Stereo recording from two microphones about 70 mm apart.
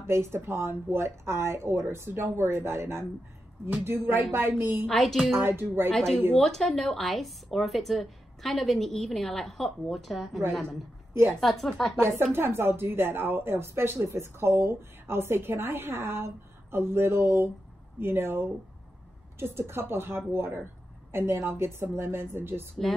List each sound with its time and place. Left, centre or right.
0.0 s a woman's voice: right
4.8 s a woman's voice: centre
5.3 s a woman's voice: right
5.9 s a woman's voice: centre
12.0 s a woman's voice: right